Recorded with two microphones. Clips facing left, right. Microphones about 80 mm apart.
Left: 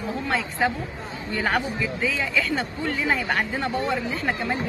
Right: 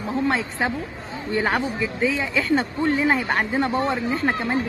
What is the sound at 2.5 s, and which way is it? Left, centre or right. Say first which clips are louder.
Speech: right 6 dB; right.